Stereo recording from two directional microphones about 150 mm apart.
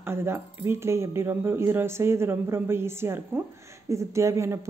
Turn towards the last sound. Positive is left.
turn(degrees=-20)  # may be behind; listen again after turning